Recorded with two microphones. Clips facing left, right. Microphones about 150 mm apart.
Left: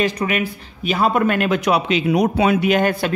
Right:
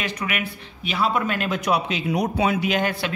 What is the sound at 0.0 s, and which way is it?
Speech, 35° left (ahead or behind).